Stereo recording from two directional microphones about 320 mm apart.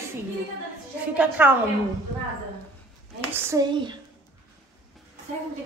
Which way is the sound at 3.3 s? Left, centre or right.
Centre.